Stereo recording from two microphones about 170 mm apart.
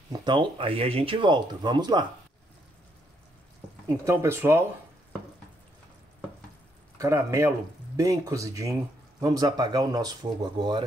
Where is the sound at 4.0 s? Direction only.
15° right (ahead or behind).